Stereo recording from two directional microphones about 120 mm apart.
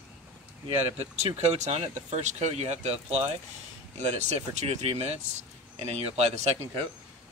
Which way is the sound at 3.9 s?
70° right (ahead or behind).